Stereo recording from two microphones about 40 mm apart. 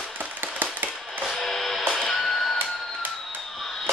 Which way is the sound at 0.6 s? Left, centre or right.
Right.